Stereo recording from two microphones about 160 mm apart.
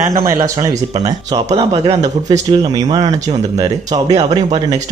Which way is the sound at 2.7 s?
20° right (ahead or behind).